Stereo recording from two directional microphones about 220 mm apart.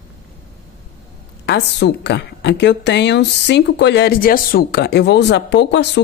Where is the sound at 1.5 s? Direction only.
50° left (ahead or behind).